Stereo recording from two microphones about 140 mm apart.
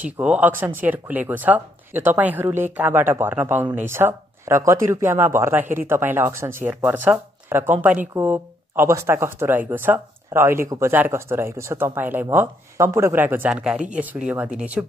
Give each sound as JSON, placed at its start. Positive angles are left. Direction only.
{"t": 0.0, "sound": "speech", "side_deg": -10}